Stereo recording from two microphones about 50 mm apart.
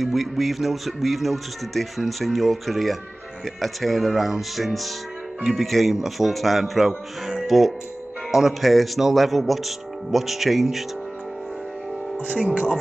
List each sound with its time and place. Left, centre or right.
0.0 s speech: centre
12.2 s speech: right